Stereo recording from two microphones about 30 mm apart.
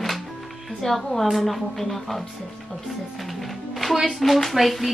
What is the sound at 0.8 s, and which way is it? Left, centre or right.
Speech, left.